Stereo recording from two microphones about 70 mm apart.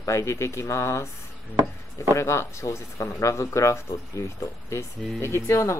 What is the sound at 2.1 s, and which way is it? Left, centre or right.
Speech, left.